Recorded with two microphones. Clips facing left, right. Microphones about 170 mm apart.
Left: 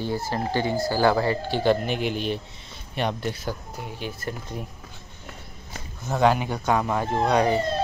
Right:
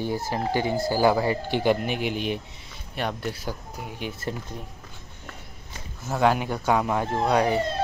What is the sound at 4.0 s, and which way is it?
Speech, 25° right (ahead or behind).